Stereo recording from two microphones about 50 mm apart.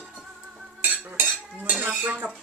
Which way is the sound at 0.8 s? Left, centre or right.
Right.